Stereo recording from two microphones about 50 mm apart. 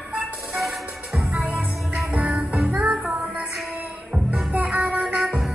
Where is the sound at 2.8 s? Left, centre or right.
Centre.